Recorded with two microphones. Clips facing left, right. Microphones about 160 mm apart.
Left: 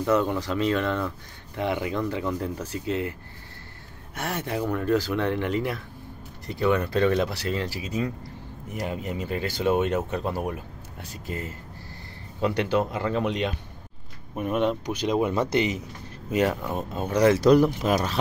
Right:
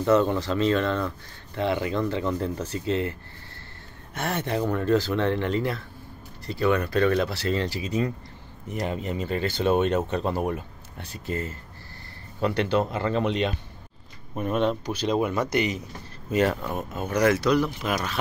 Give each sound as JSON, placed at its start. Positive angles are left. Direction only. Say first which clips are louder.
{"t": 0.0, "sound": "speech", "louder": "right 2 dB", "side_deg": 10}
{"t": 16.9, "sound": "speech", "louder": "left 2 dB", "side_deg": 30}